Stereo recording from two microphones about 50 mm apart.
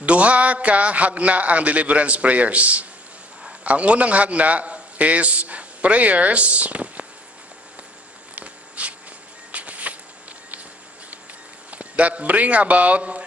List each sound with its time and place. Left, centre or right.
0.0 s a man's voice: right
8.4 s a sound: right
11.7 s a man's voice: right